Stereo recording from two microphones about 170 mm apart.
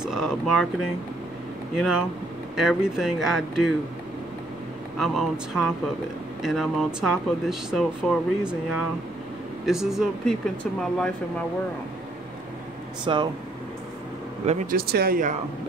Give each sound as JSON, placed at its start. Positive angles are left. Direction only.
{"t": 0.0, "sound": "speech", "side_deg": 0}
{"t": 1.8, "sound": "speech", "side_deg": -5}
{"t": 4.9, "sound": "speech", "side_deg": 0}
{"t": 9.7, "sound": "speech", "side_deg": 0}
{"t": 13.0, "sound": "speech", "side_deg": -25}
{"t": 14.4, "sound": "speech", "side_deg": -40}
{"t": 14.7, "sound": "speech", "side_deg": -65}